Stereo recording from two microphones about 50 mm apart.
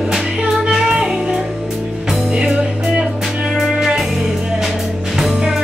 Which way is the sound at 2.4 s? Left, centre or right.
Centre.